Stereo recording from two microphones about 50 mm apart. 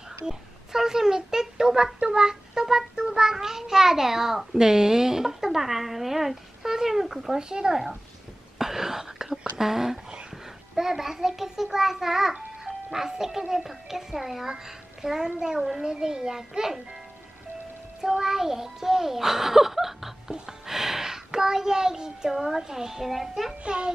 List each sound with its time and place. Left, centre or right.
0.2 s child singing: centre
8.5 s whispering: centre
9.4 s child singing: centre
14.5 s a child's voice: centre
15.4 s child singing: centre
18.0 s child singing: centre
23.6 s a child's voice: right